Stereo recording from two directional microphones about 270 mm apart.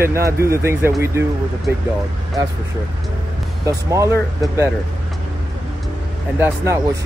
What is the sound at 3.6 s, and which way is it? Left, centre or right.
Speech, centre.